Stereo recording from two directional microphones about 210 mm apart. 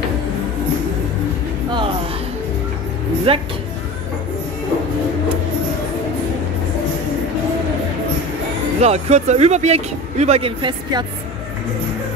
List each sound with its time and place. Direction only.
3.3 s speech: 25° right (ahead or behind)
8.8 s speech: 30° right (ahead or behind)